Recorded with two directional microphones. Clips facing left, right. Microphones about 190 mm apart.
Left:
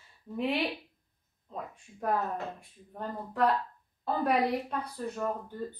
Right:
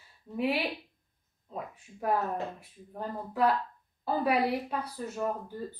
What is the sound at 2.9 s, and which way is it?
Speech, 5° right (ahead or behind).